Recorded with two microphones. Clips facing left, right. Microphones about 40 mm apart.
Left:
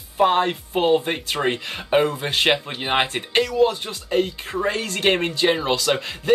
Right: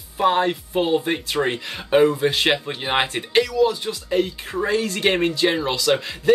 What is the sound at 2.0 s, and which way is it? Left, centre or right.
Speech, left.